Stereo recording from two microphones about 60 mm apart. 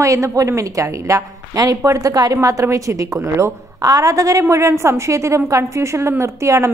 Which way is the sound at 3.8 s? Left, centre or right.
Right.